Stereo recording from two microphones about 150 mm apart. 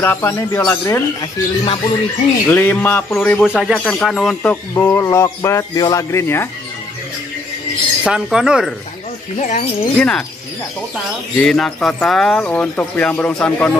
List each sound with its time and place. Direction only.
0.0 s speech: 15° left (ahead or behind)
1.2 s speech: 35° left (ahead or behind)
2.4 s speech: 15° left (ahead or behind)
4.7 s speech: 20° left (ahead or behind)
8.0 s speech: 5° right (ahead or behind)
9.4 s speech: 55° left (ahead or behind)
9.9 s speech: 5° left (ahead or behind)
11.3 s speech: 5° left (ahead or behind)